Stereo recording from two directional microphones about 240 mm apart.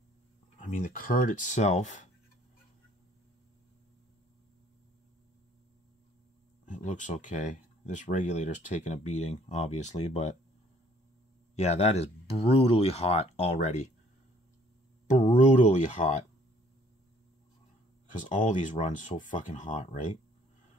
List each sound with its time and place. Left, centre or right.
0.6 s speech: left
6.6 s speech: left
11.5 s speech: left
15.0 s speech: left
18.0 s speech: left